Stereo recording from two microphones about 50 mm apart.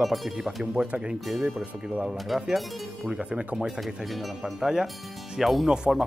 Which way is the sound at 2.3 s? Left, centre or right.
Centre.